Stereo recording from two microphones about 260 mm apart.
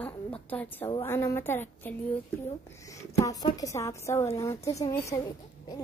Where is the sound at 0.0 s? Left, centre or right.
Centre.